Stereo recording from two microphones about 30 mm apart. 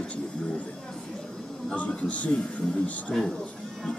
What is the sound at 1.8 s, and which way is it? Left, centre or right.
Speech, left.